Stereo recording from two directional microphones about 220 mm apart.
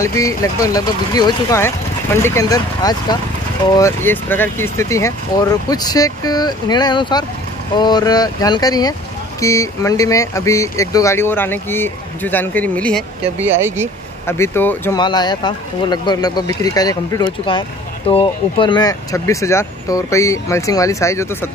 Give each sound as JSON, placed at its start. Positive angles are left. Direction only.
{"t": 0.2, "sound": "speech", "side_deg": 15}
{"t": 13.5, "sound": "speech", "side_deg": -10}
{"t": 14.2, "sound": "speech", "side_deg": 10}